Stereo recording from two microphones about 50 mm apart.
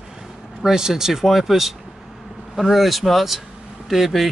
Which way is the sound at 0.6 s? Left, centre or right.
Centre.